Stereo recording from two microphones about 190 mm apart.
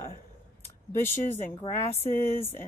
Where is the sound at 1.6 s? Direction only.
30° left (ahead or behind).